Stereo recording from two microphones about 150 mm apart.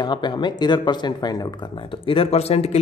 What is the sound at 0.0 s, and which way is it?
A man's voice, 30° left (ahead or behind).